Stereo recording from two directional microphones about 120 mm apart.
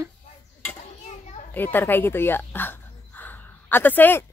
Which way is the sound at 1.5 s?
15° left (ahead or behind).